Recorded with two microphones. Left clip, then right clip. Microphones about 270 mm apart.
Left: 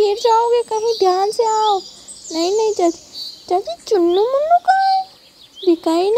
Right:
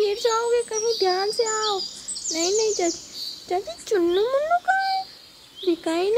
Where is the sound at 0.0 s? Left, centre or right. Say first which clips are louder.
Left 8 dB; centre.